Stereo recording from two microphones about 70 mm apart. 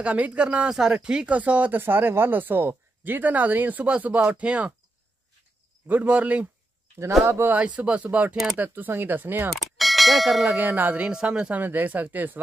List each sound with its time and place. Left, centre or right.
0.0 s speech: right
1.8 s speech: right
5.9 s speech: right
7.2 s speech: right
7.5 s speech: centre
9.5 s bell: centre
10.6 s speech: right
11.1 s speech: centre
11.6 s speech: right